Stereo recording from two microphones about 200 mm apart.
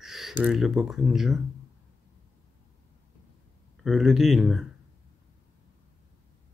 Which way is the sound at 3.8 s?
Centre (ahead or behind).